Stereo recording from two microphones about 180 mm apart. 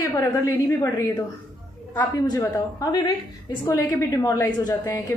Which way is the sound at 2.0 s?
20° left (ahead or behind).